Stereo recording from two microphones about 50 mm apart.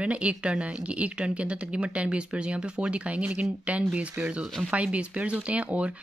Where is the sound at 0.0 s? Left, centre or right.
Right.